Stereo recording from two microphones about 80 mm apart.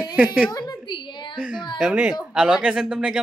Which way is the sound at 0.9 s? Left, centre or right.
Left.